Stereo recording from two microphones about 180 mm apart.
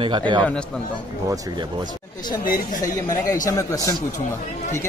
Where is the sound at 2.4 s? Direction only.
50° left (ahead or behind).